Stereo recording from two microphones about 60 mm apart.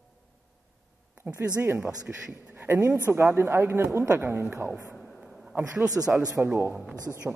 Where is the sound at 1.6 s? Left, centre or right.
Right.